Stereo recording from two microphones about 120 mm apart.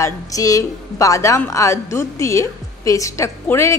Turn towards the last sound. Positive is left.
turn(degrees=25)  # may be behind; listen again after turning